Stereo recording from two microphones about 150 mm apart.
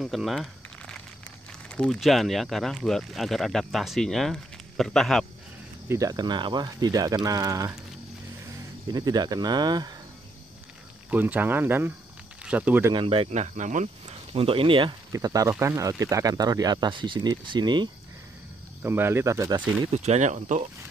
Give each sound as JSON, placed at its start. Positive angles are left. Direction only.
{"t": 0.0, "sound": "a sound", "side_deg": 0}
{"t": 1.7, "sound": "speech", "side_deg": 5}
{"t": 5.9, "sound": "speech", "side_deg": -20}
{"t": 8.9, "sound": "speech", "side_deg": -25}
{"t": 11.1, "sound": "speech", "side_deg": -10}
{"t": 12.9, "sound": "speech", "side_deg": -40}
{"t": 14.0, "sound": "speech", "side_deg": -35}
{"t": 15.1, "sound": "speech", "side_deg": -20}
{"t": 18.8, "sound": "speech", "side_deg": -15}
{"t": 19.9, "sound": "speech", "side_deg": -50}